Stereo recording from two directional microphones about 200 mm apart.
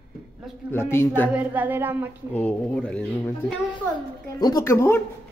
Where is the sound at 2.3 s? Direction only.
10° left (ahead or behind).